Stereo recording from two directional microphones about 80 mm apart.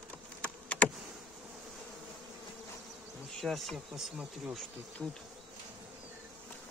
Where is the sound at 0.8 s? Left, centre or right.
Centre.